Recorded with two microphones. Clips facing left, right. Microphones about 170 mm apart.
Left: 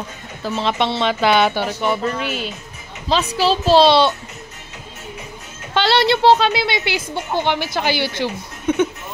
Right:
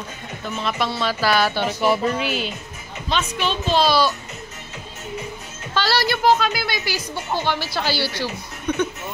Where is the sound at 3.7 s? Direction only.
30° left (ahead or behind).